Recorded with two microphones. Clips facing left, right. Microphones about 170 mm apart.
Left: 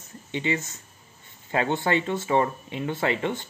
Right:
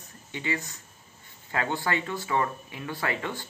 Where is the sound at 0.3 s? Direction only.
20° left (ahead or behind).